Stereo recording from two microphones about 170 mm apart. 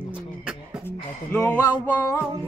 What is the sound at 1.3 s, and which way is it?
Music, 5° left (ahead or behind).